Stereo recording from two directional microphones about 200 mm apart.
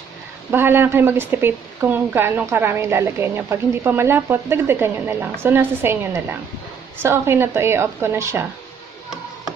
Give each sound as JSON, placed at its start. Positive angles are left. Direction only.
{"t": 0.5, "sound": "speech", "side_deg": -10}